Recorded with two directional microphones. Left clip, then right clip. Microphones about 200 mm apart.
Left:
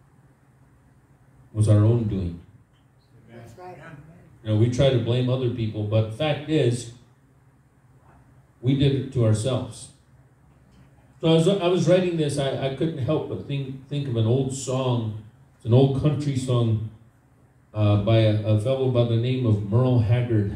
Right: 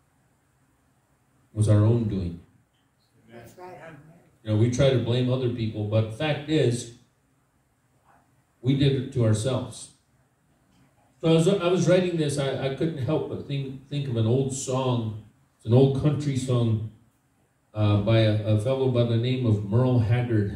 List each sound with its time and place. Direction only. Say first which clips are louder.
1.5 s a man's voice: left 1 dB; 5° right (ahead or behind)
3.3 s a sound: left 1 dB; 30° right (ahead or behind)
4.4 s a man's voice: left 1 dB; 5° right (ahead or behind)
8.6 s a man's voice: left 1 dB; 5° right (ahead or behind)
11.1 s a man's voice: left 2 dB; 5° right (ahead or behind)
17.7 s a man's voice: left 2 dB; 5° right (ahead or behind)